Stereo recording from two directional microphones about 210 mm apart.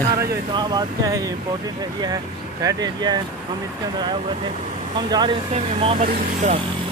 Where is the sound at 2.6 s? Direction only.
20° right (ahead or behind).